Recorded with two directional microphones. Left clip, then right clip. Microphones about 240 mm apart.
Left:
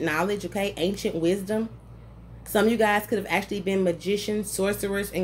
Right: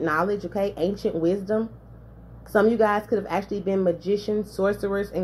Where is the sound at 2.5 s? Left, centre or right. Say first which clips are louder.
Right 2 dB; centre.